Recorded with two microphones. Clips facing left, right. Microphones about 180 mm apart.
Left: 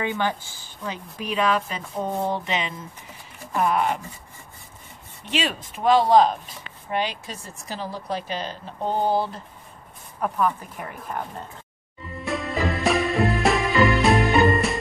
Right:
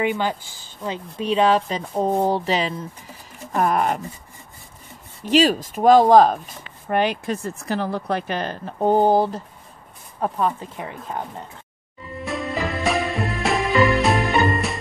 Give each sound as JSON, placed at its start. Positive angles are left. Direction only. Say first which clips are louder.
{"t": 0.0, "sound": "speech", "louder": "right 3 dB", "side_deg": -15}
{"t": 5.2, "sound": "speech", "louder": "right 10 dB", "side_deg": -40}
{"t": 10.2, "sound": "speech", "louder": "right 1 dB", "side_deg": -30}
{"t": 12.3, "sound": "music", "louder": "even", "side_deg": 0}